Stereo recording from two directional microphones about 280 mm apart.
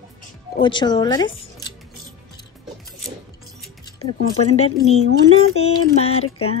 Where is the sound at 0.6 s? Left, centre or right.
Centre.